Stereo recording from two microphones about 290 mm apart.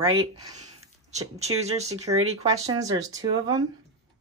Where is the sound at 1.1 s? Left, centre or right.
Right.